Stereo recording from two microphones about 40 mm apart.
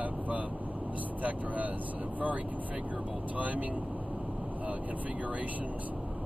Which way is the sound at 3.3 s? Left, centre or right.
Right.